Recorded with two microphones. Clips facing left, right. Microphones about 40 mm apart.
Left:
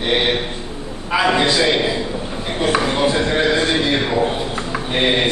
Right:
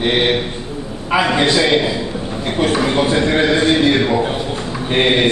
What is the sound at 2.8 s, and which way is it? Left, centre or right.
Speech, centre.